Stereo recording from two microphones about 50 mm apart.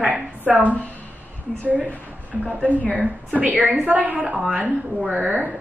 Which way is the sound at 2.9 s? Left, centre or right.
Right.